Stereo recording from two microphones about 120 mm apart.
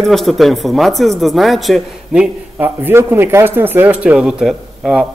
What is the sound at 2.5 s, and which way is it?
A man's voice, 15° right (ahead or behind).